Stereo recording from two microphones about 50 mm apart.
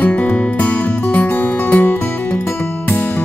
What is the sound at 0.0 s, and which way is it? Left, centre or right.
Music, left.